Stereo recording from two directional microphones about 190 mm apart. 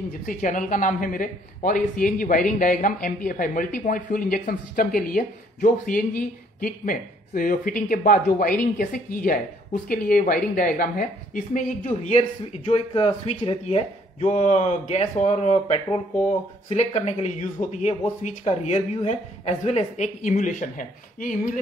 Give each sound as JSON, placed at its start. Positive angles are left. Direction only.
{"t": 0.3, "sound": "speech", "side_deg": 45}